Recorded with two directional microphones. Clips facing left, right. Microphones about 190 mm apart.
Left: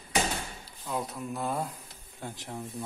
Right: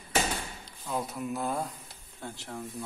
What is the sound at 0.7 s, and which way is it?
Speech, centre (ahead or behind).